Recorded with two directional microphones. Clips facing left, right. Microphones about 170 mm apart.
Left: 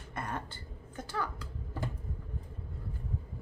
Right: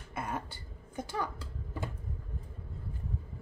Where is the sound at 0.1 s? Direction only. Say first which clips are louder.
Right 1 dB; 5° right (ahead or behind).